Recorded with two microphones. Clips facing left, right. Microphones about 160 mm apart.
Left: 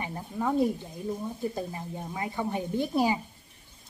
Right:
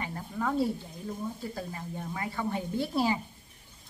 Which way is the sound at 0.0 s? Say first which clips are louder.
Left 2 dB; 20° left (ahead or behind).